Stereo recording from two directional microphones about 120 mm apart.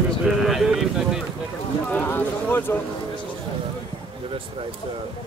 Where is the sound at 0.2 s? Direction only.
Centre (ahead or behind).